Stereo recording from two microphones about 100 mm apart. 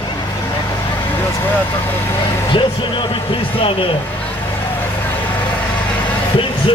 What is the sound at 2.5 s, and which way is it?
Speech, 55° left (ahead or behind).